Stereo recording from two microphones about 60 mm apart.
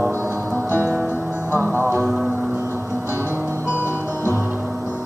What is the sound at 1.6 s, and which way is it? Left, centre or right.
Music, right.